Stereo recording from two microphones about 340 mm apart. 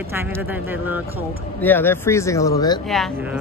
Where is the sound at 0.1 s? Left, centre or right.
Centre.